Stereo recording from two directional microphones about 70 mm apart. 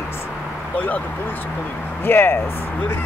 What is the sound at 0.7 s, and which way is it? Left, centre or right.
Speech, left.